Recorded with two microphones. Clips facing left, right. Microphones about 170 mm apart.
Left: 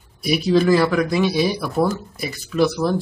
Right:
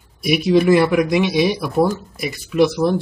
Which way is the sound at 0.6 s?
15° right (ahead or behind).